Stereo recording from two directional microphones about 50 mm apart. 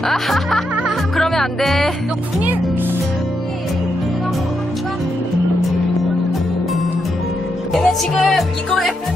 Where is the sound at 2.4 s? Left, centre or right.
Right.